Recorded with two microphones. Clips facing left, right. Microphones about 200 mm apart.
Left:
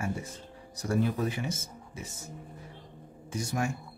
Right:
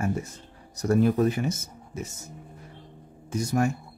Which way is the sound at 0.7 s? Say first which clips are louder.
Right 7 dB; 40° right (ahead or behind).